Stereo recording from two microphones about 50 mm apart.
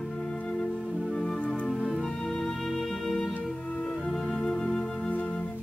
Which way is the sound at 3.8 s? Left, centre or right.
Centre.